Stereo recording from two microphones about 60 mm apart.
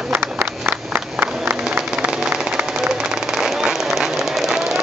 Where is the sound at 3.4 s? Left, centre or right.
Centre.